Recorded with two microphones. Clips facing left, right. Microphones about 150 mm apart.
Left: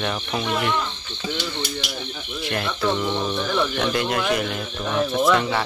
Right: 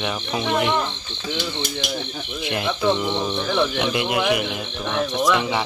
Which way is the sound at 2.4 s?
20° right (ahead or behind).